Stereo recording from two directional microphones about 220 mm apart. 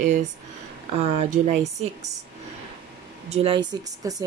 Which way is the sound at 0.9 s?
30° right (ahead or behind).